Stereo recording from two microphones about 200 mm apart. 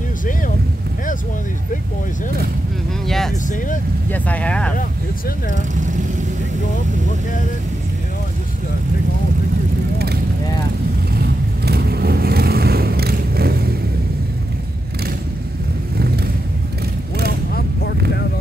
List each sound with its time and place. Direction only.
3.1 s speech: centre (ahead or behind)
11.1 s vehicle: 50° right (ahead or behind)